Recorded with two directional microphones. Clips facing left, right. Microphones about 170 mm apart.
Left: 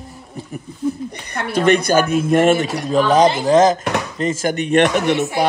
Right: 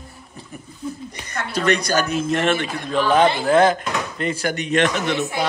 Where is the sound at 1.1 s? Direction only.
55° left (ahead or behind); by 3.6 s 40° left (ahead or behind).